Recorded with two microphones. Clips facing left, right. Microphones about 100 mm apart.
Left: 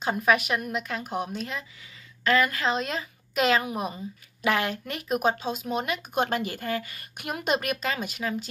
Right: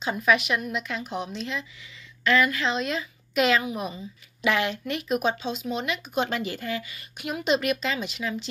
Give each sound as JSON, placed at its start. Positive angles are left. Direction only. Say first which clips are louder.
{"t": 0.0, "sound": "a woman's voice", "louder": "even", "side_deg": 40}